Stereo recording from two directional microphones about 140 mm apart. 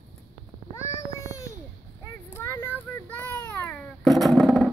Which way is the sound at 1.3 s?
20° left (ahead or behind).